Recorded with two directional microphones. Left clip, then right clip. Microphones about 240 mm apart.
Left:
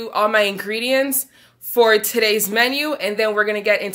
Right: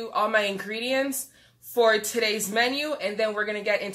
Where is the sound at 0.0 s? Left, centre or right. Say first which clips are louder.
Left 7 dB; left.